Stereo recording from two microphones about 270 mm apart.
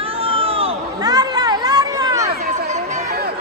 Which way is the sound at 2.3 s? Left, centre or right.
Right.